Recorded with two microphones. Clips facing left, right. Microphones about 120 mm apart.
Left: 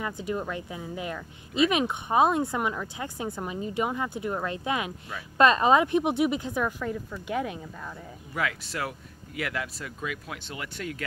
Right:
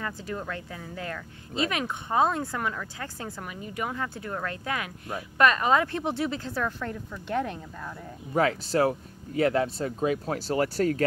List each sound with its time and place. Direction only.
0.0 s speech: 15° left (ahead or behind)
8.3 s speech: 30° right (ahead or behind)